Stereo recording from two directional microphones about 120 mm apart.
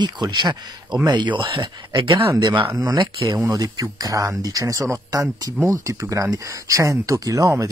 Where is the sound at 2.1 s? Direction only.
25° right (ahead or behind).